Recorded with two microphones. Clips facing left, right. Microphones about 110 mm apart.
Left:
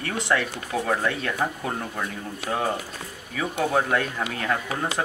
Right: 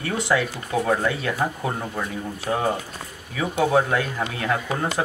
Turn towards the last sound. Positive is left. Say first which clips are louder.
# right 2 dB
turn(degrees=-5)  # may be behind; listen again after turning